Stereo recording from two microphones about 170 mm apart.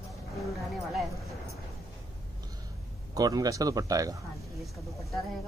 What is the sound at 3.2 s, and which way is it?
Speech, 20° right (ahead or behind).